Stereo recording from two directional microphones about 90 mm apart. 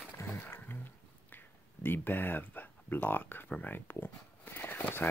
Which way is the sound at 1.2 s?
20° left (ahead or behind).